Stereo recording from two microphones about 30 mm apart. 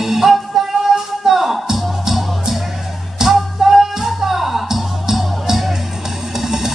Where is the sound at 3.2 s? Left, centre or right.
Centre.